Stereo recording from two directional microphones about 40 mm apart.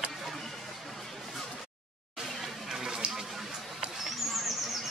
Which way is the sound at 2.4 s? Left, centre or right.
Centre.